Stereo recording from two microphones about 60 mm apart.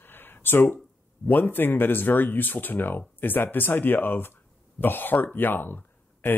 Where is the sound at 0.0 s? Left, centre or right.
Left.